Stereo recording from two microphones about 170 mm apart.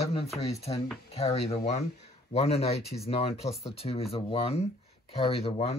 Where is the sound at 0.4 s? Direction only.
35° left (ahead or behind).